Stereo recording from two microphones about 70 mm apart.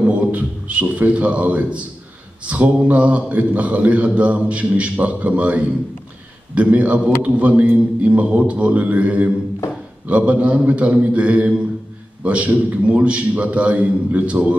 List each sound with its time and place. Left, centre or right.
0.0 s speech: centre